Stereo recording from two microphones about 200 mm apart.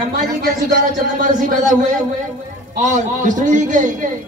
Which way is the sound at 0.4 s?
45° right (ahead or behind).